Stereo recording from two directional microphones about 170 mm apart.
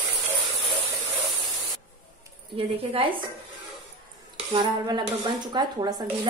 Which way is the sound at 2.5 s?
30° right (ahead or behind).